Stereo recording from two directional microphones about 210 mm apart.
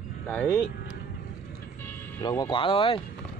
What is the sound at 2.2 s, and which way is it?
Speech, 20° left (ahead or behind).